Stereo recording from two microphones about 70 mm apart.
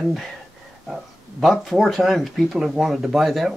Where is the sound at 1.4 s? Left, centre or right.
Centre.